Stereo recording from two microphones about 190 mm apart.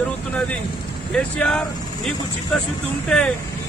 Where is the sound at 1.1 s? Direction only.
5° left (ahead or behind).